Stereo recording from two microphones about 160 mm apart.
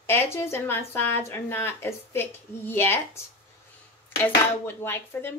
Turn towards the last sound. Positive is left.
turn(degrees=15)  # may be behind; listen again after turning